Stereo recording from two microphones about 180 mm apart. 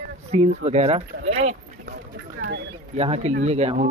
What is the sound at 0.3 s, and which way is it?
Speech, 35° right (ahead or behind).